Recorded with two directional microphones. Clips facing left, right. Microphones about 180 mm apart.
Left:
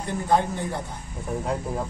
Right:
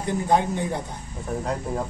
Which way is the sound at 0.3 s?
15° right (ahead or behind).